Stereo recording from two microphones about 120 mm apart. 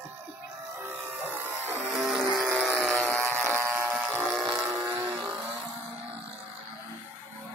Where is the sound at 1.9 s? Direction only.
Centre (ahead or behind).